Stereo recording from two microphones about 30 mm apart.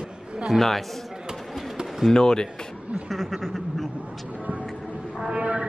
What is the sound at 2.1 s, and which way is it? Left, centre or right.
Speech, left.